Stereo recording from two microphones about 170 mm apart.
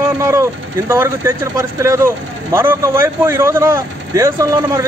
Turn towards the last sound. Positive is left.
turn(degrees=-15)  # may be behind; listen again after turning